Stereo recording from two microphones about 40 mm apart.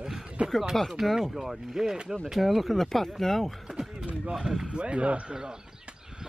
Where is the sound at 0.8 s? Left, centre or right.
Centre.